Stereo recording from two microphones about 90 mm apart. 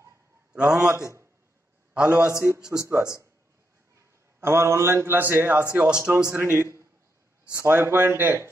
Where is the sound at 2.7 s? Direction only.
30° right (ahead or behind).